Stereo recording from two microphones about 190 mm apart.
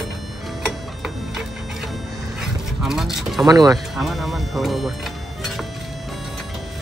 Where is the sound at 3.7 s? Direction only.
Centre (ahead or behind).